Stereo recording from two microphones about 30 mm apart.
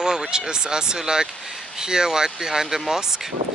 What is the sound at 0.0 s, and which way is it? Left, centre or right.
Speech, right.